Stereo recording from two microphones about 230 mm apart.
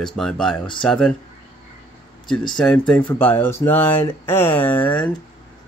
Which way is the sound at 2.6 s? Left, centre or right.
Centre.